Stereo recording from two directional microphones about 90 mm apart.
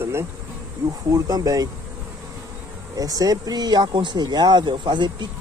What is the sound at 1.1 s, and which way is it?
Speech, 45° right (ahead or behind).